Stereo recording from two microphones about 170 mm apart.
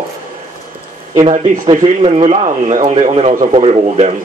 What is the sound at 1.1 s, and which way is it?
A man's voice, 35° right (ahead or behind).